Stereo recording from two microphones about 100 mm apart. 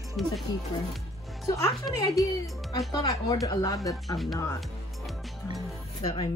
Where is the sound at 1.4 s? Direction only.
30° left (ahead or behind).